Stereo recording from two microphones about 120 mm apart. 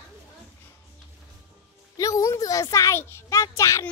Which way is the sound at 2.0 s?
30° left (ahead or behind).